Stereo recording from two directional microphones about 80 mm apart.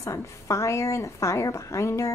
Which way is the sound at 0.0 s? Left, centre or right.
Left.